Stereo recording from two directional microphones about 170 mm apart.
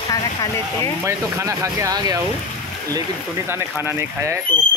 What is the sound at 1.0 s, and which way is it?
Speech, 15° right (ahead or behind).